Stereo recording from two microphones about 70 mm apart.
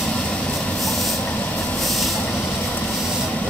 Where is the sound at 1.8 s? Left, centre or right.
Centre.